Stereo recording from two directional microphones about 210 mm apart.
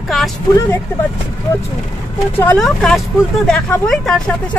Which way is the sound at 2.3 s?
5° left (ahead or behind).